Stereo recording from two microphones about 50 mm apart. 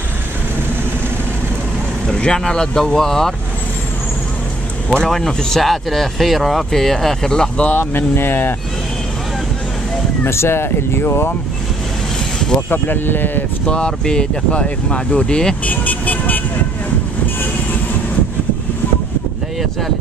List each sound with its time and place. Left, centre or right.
2.0 s speech: centre
5.0 s speech: centre
7.3 s speech: left
7.7 s speech: left
10.2 s speech: left
12.6 s speech: left
13.7 s speech: centre
15.6 s speech: left